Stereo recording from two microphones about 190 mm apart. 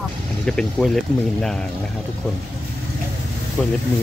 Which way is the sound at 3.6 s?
5° left (ahead or behind).